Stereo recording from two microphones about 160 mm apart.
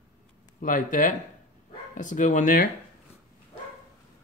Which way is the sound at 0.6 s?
55° left (ahead or behind).